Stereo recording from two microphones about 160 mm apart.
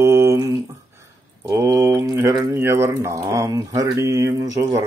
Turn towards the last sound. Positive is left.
turn(degrees=-20)  # may be behind; listen again after turning